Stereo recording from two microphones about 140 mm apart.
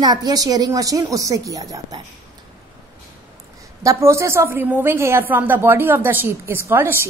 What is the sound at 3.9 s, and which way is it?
A woman's voice, 20° right (ahead or behind).